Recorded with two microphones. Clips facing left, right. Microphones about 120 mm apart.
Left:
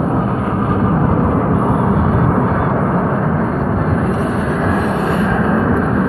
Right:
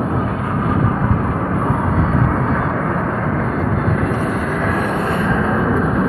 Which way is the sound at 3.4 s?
Centre (ahead or behind).